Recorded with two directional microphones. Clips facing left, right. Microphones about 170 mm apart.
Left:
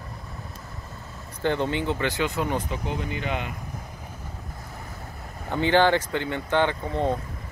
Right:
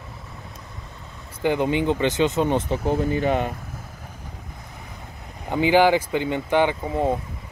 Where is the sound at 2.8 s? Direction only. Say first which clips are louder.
Right 9 dB; 40° right (ahead or behind).